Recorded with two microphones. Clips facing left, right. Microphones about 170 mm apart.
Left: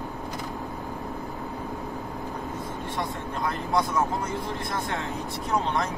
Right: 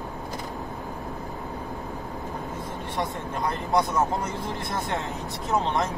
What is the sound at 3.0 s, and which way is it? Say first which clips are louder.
Speech: right 2 dB; 20° right (ahead or behind).